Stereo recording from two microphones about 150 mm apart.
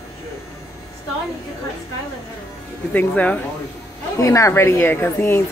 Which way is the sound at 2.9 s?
10° left (ahead or behind).